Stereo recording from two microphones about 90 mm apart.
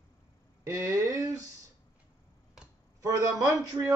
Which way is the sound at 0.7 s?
40° right (ahead or behind).